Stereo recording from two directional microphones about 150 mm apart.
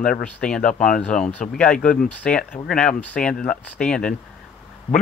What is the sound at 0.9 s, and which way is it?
Speech, 5° left (ahead or behind).